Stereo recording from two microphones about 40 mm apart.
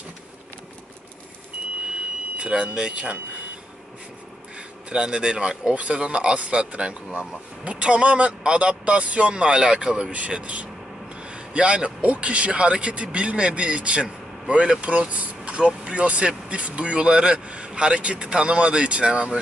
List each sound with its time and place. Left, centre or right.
2.3 s speech: right
4.8 s a man's voice: right